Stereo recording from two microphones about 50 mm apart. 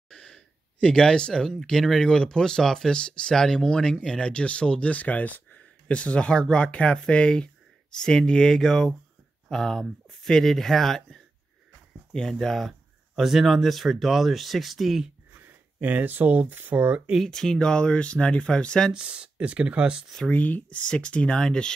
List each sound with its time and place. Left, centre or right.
0.1 s speech: centre
3.0 s speech: centre
15.8 s speech: right
17.2 s speech: centre
18.9 s speech: right
20.2 s speech: left
20.8 s speech: left